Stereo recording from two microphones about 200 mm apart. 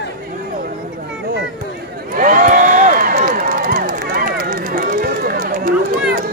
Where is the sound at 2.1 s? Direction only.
45° right (ahead or behind).